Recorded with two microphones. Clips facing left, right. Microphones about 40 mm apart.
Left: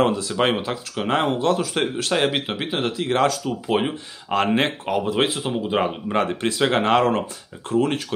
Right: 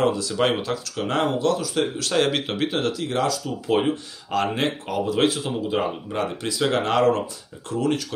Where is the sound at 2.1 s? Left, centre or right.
Centre.